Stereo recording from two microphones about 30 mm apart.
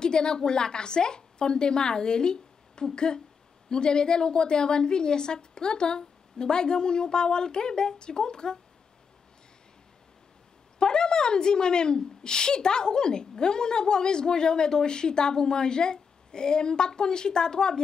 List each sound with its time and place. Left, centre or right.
0.0 s a woman's voice: left
10.8 s a woman's voice: left